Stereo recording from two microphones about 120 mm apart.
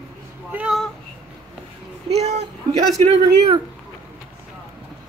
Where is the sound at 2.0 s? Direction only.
60° right (ahead or behind).